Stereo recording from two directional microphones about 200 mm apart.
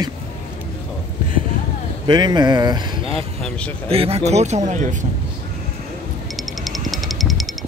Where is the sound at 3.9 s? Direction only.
30° right (ahead or behind).